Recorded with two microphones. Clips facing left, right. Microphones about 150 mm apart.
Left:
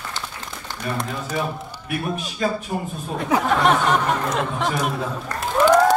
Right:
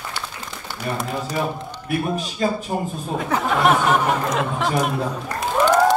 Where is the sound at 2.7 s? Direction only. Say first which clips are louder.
Right 2 dB; 30° right (ahead or behind).